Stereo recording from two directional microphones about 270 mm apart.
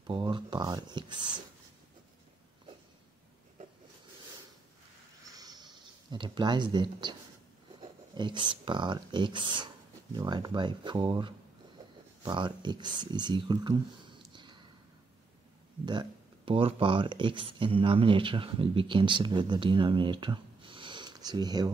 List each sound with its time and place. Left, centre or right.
0.0 s speech: centre
5.3 s a sound: centre
7.8 s speech: centre
15.8 s speech: centre